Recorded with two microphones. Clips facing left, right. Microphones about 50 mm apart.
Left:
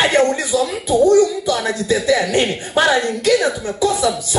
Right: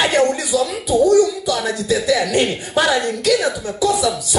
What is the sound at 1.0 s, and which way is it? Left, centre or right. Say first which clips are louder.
Speech: left 1 dB; left.